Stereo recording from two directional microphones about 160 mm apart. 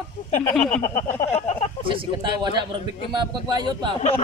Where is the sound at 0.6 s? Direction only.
45° left (ahead or behind).